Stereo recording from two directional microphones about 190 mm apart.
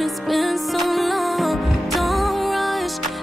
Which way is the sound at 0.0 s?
Centre (ahead or behind).